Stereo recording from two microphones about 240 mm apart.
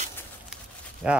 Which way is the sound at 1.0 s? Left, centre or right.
Centre.